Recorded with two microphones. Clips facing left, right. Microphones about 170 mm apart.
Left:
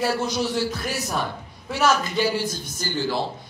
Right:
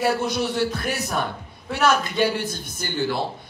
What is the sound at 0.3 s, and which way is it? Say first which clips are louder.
A man's voice: right 1 dB; 60° right (ahead or behind).